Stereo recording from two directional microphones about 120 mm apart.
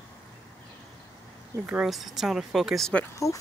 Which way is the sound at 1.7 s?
5° right (ahead or behind).